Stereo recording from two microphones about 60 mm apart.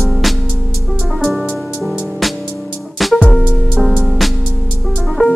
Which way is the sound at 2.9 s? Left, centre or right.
Centre.